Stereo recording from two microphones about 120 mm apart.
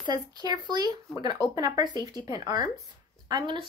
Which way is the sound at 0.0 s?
35° right (ahead or behind).